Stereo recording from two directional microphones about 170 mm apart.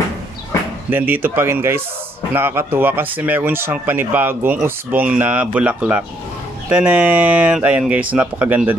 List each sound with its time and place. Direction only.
0.8 s speech: 10° right (ahead or behind)